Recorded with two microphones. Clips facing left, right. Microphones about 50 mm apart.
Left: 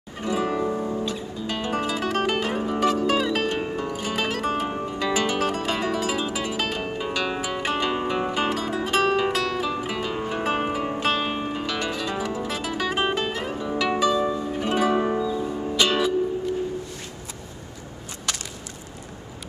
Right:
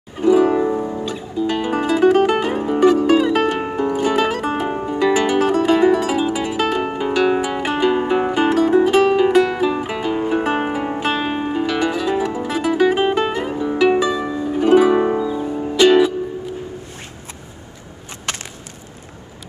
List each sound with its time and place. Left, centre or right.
0.2 s music: centre
0.6 s music: right
1.0 s music: centre
3.3 s music: right
3.7 s zither: right
4.0 s music: centre
7.6 s music: centre
11.0 s music: centre
15.0 s music: right
15.8 s music: centre